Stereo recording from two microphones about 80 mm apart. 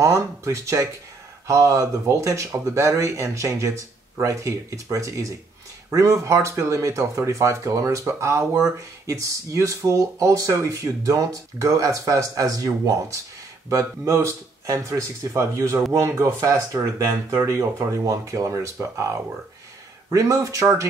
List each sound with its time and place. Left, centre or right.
0.0 s speech: right